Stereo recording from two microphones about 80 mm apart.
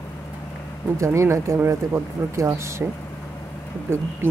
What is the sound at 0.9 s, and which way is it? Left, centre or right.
Speech, right.